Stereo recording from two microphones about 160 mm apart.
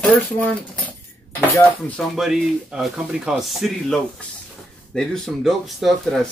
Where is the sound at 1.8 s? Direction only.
5° left (ahead or behind).